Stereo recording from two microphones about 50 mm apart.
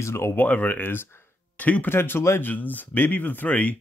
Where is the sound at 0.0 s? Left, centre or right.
Left.